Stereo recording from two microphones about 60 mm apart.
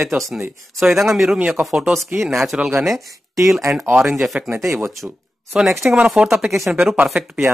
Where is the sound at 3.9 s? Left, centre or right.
Centre.